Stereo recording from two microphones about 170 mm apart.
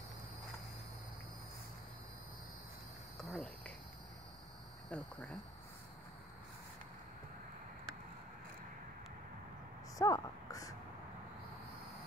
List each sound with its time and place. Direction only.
3.2 s cricket: centre (ahead or behind)
4.8 s cricket: 5° left (ahead or behind)
9.9 s a sound: 20° left (ahead or behind)